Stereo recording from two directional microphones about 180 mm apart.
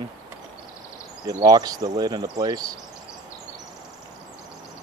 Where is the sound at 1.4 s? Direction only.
20° right (ahead or behind).